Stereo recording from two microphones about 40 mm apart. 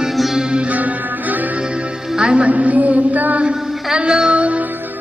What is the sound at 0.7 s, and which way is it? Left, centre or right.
Music, right.